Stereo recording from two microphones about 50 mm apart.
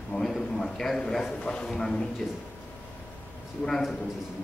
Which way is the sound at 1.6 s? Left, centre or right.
Centre.